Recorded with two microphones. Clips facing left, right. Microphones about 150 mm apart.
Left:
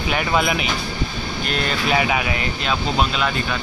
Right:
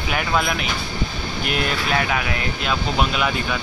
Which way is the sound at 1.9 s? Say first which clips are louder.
Left 4 dB; 5° left (ahead or behind).